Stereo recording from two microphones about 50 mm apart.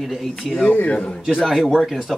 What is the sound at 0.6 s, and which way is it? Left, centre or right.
Speech, left.